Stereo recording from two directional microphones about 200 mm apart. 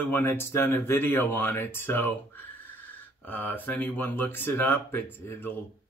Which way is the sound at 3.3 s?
10° left (ahead or behind).